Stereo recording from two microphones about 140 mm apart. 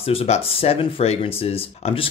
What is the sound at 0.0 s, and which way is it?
Speech, 45° left (ahead or behind).